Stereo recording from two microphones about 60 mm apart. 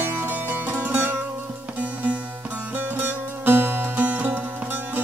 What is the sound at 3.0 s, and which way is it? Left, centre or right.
Music, right.